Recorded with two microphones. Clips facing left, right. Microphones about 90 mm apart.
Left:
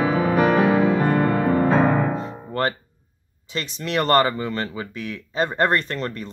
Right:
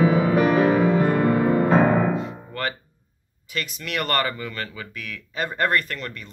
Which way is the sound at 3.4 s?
30° left (ahead or behind).